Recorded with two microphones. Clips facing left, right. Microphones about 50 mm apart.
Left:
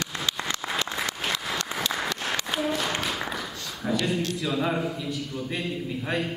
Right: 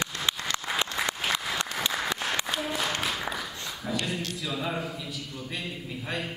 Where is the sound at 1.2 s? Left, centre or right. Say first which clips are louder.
Even; centre.